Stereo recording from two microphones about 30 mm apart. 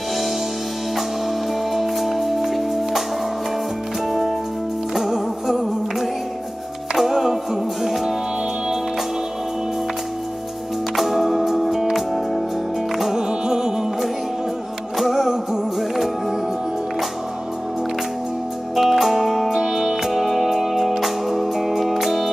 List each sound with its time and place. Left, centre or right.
1.7 s music: centre
4.9 s music: centre
7.0 s music: centre
11.0 s music: centre
13.1 s music: centre
15.0 s music: centre
18.8 s music: centre
19.5 s music: centre